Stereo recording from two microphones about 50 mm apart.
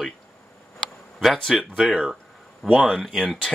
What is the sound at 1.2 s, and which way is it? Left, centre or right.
Speech, centre.